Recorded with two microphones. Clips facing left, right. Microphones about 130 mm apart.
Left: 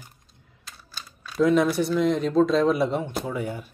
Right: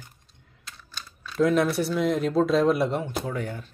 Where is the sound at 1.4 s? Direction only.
Centre (ahead or behind).